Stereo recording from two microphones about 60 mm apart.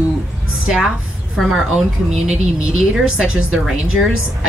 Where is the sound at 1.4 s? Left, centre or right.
Centre.